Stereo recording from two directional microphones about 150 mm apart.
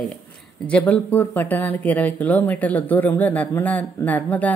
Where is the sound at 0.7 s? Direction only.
10° left (ahead or behind).